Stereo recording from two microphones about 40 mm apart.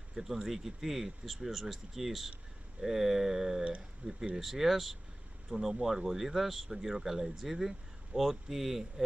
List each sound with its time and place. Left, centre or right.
0.1 s speech: centre
4.0 s speech: right
4.4 s speech: centre